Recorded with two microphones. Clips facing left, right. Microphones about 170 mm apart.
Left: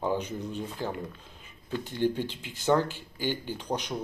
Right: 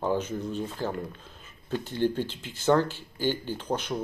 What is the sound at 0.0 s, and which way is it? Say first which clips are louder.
Speech: right 2 dB; 15° left (ahead or behind).